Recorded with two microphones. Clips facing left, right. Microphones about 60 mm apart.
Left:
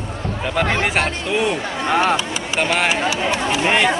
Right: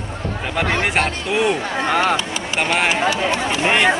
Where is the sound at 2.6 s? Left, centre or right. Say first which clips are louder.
Right 1 dB; centre.